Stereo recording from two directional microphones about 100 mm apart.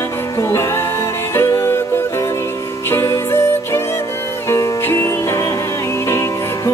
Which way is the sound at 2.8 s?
25° left (ahead or behind).